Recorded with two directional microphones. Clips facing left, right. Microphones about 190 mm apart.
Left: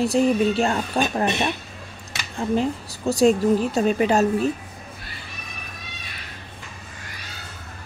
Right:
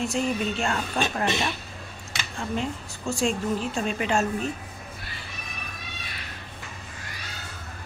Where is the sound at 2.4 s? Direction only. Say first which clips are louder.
Left 7 dB; 40° left (ahead or behind).